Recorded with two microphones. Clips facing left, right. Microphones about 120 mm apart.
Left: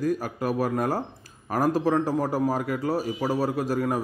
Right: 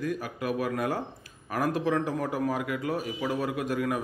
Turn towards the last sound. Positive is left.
turn(degrees=35)  # may be behind; listen again after turning